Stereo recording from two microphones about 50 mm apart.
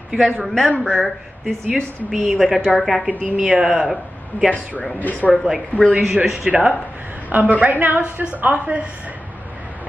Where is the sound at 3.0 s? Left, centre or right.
Right.